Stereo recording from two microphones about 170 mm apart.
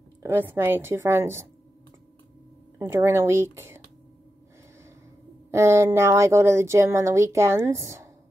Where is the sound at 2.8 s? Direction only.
15° right (ahead or behind).